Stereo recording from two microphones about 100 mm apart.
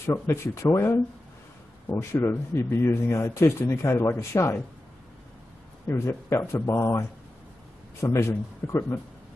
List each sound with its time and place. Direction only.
0.0 s speech: 25° left (ahead or behind)
5.9 s speech: 25° left (ahead or behind)